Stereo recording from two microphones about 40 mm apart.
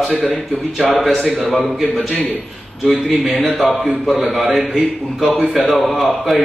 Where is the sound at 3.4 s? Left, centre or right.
Centre.